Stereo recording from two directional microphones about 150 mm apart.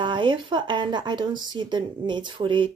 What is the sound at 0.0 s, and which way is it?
Speech, 30° right (ahead or behind).